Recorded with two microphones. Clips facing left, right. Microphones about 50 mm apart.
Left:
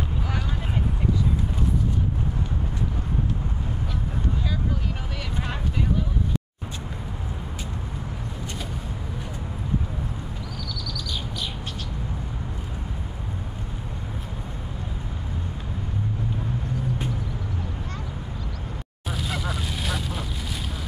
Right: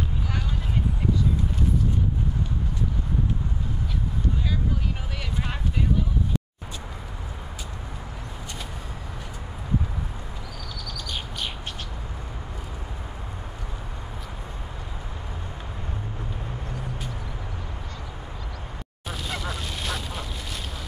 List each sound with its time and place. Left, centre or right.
10.7 s bird: right
19.0 s vehicle: centre